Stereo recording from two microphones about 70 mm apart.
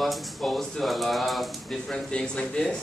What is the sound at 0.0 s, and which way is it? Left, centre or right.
A man's voice, centre.